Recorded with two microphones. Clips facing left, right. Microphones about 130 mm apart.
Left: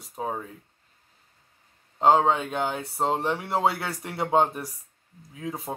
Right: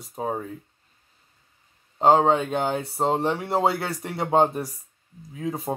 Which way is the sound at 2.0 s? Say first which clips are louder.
Right 2 dB; 30° right (ahead or behind).